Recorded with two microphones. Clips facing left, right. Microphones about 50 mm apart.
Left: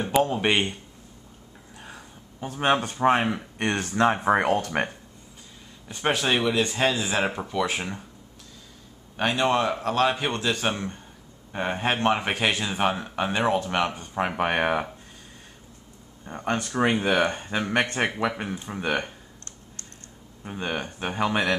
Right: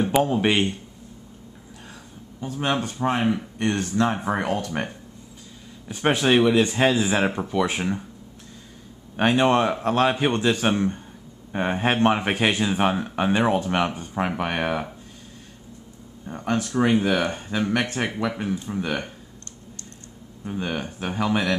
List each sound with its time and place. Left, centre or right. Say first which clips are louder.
0.1 s speech: left 2 dB; centre
2.4 s speech: left 2 dB; centre
3.5 s speech: right 2 dB; left
5.9 s speech: right 4 dB; centre
9.1 s speech: right 4 dB; centre
10.5 s speech: right 5 dB; centre
14.0 s speech: even; centre
16.3 s speech: right 2 dB; centre
20.4 s speech: right 2 dB; centre